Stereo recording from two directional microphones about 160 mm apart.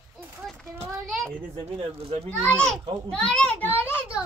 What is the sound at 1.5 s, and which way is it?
Speech, 40° right (ahead or behind).